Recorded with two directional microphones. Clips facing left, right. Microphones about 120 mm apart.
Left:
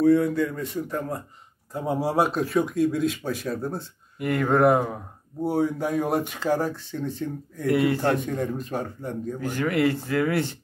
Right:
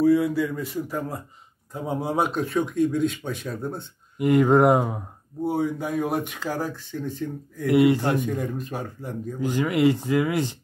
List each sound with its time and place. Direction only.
0.0 s speech: 5° right (ahead or behind)
4.2 s speech: 20° right (ahead or behind)
5.4 s speech: centre (ahead or behind)
7.6 s speech: 20° right (ahead or behind)
8.2 s speech: centre (ahead or behind)
9.4 s speech: 15° right (ahead or behind)